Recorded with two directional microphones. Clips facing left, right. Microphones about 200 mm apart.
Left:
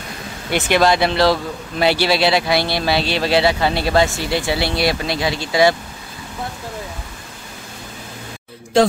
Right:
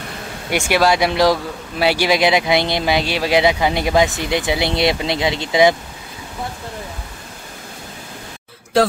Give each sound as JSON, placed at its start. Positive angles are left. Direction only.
{"t": 0.5, "sound": "speech", "side_deg": -10}